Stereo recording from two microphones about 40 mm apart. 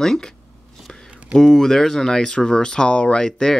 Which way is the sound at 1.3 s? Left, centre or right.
Centre.